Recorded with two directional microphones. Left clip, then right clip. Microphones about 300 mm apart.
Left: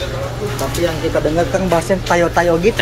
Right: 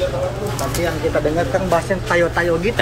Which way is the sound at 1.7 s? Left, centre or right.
Left.